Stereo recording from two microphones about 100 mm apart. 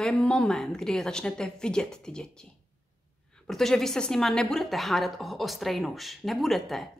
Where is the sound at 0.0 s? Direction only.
5° left (ahead or behind).